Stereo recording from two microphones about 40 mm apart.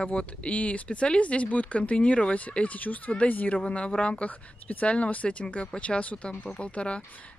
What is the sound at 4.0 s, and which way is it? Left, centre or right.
Speech, left.